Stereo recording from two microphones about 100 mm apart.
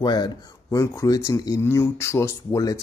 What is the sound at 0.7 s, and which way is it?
Speech, 30° left (ahead or behind).